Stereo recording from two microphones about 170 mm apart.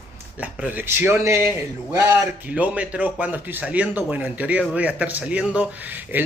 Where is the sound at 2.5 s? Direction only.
10° right (ahead or behind).